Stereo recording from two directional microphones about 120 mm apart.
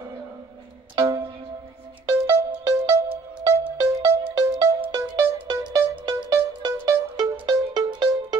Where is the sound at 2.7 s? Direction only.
25° right (ahead or behind).